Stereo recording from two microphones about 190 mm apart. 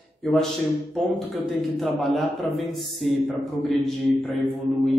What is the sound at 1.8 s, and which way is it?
A man's voice, centre (ahead or behind).